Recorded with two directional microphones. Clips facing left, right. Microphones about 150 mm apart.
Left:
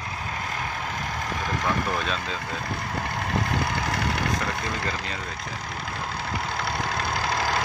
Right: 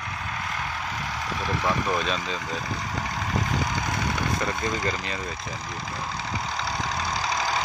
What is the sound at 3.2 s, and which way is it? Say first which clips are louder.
Vehicle: left 1 dB; 60° left (ahead or behind).